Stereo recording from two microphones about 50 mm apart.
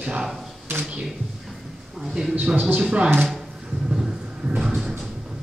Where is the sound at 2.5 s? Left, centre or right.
Right.